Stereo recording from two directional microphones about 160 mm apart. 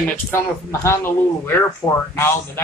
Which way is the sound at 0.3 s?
15° left (ahead or behind).